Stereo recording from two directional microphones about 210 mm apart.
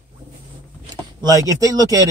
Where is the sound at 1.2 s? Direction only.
15° right (ahead or behind).